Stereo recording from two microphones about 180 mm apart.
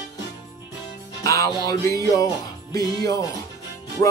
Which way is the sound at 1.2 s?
20° left (ahead or behind).